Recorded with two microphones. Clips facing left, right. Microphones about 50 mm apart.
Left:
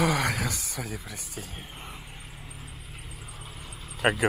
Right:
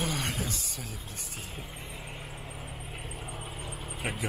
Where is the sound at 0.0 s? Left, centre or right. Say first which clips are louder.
Left 7 dB; left.